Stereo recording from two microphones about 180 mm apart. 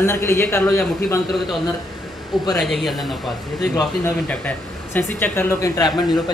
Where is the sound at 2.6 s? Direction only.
Centre (ahead or behind).